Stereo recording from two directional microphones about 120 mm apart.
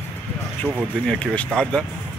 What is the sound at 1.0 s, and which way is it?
Speech, 10° left (ahead or behind).